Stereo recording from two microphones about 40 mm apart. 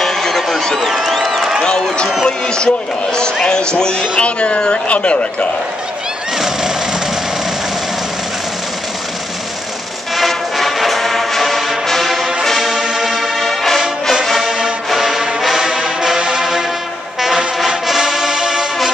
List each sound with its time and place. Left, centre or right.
0.0 s a sound: centre
2.2 s speech: left
6.3 s a sound: centre
10.1 s music: centre
14.4 s music: centre
15.4 s brass instrument: centre
16.1 s music: centre
17.6 s music: centre